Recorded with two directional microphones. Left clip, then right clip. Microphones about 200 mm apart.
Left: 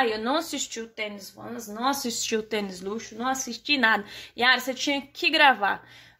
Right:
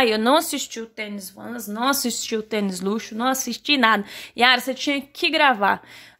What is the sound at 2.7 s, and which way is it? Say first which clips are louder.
A woman's voice: right 7 dB; 45° right (ahead or behind).